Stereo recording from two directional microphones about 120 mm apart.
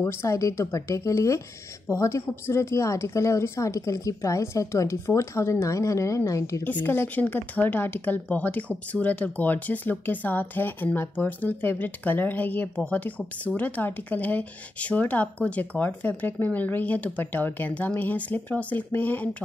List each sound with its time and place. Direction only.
0.0 s speech: 25° left (ahead or behind)
6.6 s speech: 15° left (ahead or behind)